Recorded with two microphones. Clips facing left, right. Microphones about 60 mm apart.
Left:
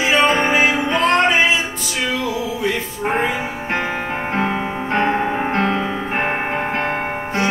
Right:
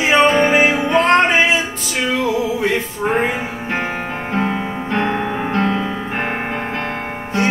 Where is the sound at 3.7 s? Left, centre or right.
Left.